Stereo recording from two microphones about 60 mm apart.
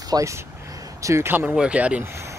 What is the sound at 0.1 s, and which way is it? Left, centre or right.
Speech, right.